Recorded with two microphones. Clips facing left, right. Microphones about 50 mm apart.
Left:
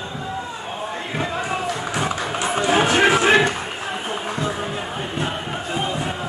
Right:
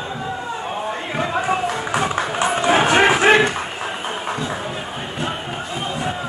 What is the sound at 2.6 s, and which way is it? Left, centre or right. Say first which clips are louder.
Run: right 2 dB; right.